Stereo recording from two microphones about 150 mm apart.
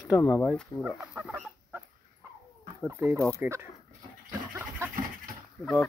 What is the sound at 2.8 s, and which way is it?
Speech, 15° right (ahead or behind).